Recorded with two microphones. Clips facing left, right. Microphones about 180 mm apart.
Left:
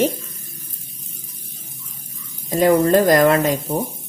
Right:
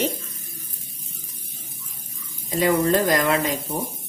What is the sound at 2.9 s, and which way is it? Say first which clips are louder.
Speech: left 6 dB; 45° left (ahead or behind).